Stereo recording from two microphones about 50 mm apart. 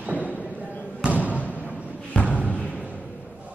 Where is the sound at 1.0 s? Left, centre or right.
Right.